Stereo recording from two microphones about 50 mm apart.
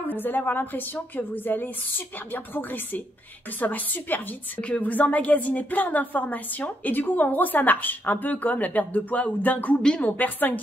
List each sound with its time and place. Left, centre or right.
0.1 s a woman's voice: left
9.8 s a woman's voice: centre
10.0 s a woman's voice: left